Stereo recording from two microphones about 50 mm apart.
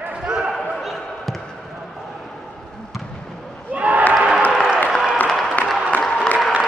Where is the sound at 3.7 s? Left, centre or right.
Right.